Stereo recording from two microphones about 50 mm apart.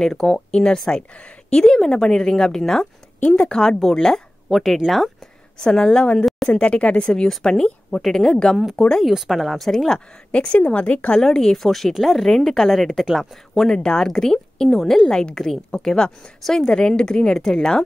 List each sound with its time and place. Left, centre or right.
0.0 s a woman's voice: centre
4.5 s speech: centre
4.8 s a woman's voice: centre
9.0 s speech: centre
10.3 s speech: left
11.1 s a woman's voice: centre
13.7 s a woman's voice: centre